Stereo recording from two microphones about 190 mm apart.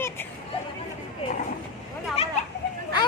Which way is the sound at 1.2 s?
30° left (ahead or behind).